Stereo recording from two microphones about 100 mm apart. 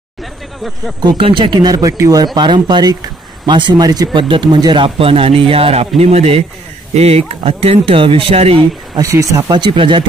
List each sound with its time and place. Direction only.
0.2 s a sound: centre (ahead or behind)
1.0 s speech: 60° right (ahead or behind)
1.6 s speech: 40° right (ahead or behind)
4.2 s speech: 55° right (ahead or behind); by 5.9 s 75° right (ahead or behind)
5.9 s speech: 90° right
8.9 s speech: 35° right (ahead or behind)
9.5 s speech: 55° right (ahead or behind)